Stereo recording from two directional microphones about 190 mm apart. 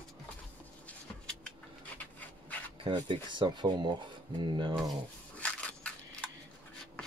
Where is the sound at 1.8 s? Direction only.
10° left (ahead or behind).